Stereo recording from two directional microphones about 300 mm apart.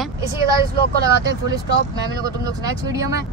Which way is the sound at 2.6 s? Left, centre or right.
Centre.